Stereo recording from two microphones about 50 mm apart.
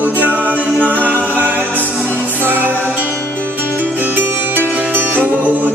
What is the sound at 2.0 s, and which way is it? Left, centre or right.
Music, right.